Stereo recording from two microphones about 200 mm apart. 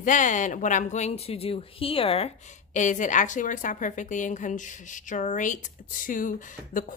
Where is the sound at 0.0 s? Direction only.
40° left (ahead or behind).